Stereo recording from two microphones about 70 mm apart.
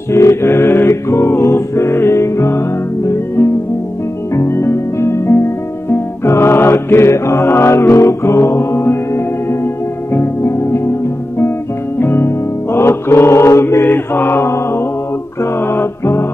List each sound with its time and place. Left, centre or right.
0.1 s a capella: left
4.4 s music: left
10.1 s music: left
12.0 s music: left
12.7 s mantra: left
15.7 s music: left